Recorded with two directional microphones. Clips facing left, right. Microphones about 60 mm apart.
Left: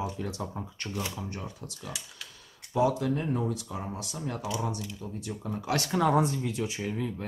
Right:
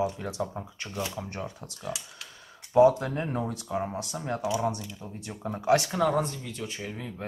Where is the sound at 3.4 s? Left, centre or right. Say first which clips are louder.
Right 2 dB; right.